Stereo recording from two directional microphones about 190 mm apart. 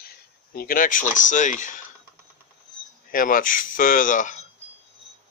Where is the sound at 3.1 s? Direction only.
45° left (ahead or behind).